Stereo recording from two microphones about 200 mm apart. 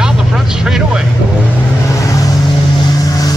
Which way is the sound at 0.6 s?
5° right (ahead or behind).